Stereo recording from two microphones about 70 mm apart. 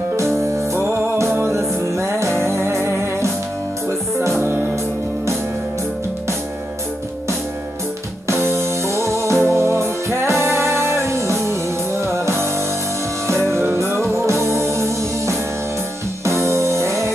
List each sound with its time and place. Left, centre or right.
0.1 s music: right
4.4 s music: right
8.3 s music: right